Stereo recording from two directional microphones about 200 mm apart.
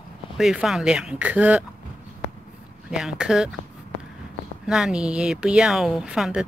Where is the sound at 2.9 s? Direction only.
5° right (ahead or behind).